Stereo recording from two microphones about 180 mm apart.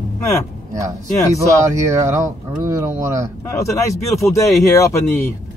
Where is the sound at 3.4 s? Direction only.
15° left (ahead or behind).